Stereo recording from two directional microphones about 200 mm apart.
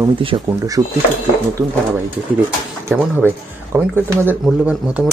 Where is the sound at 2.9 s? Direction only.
10° right (ahead or behind).